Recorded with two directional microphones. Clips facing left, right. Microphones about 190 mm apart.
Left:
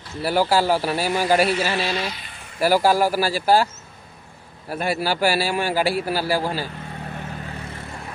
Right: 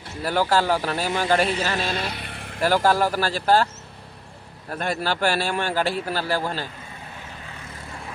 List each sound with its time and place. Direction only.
0.2 s a man's voice: 10° left (ahead or behind)
1.9 s vehicle: 55° right (ahead or behind)
2.6 s a man's voice: 10° left (ahead or behind)
4.6 s a man's voice: 10° left (ahead or behind)